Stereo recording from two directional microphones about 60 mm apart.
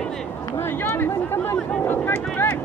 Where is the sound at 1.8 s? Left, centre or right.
Left.